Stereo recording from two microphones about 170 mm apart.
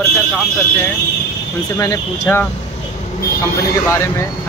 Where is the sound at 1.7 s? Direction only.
20° left (ahead or behind).